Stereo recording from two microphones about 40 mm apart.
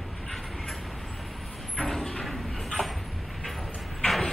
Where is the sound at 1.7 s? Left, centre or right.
Centre.